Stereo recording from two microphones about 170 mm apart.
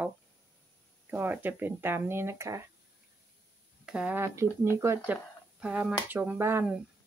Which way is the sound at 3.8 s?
5° right (ahead or behind).